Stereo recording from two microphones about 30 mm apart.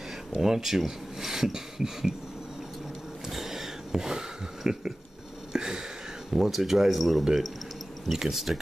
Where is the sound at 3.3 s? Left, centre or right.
Centre.